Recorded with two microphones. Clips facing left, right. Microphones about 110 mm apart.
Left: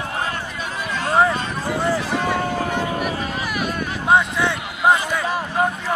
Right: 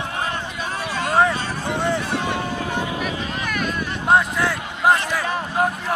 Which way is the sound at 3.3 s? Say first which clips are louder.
Left 1 dB; 5° left (ahead or behind).